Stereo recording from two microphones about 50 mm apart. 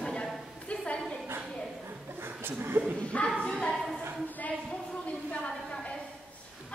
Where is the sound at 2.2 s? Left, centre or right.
Right.